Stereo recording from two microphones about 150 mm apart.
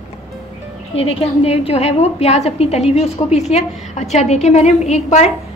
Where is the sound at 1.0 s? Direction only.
40° left (ahead or behind).